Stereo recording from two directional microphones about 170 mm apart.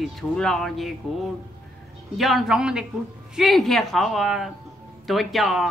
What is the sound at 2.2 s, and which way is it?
A woman's voice, centre (ahead or behind).